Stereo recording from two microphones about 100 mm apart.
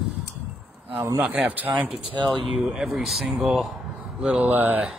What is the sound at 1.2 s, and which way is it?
Speech, 15° right (ahead or behind).